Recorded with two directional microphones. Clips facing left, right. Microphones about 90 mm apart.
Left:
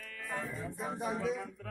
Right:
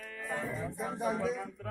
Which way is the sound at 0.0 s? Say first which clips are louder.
Right 3 dB; 25° right (ahead or behind).